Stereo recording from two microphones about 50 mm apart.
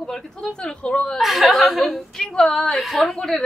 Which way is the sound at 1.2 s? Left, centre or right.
Centre.